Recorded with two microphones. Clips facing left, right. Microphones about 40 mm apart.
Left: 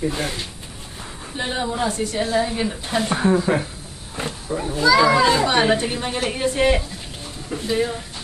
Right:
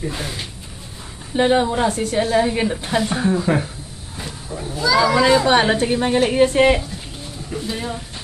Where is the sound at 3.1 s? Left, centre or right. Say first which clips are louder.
Left 1 dB; centre.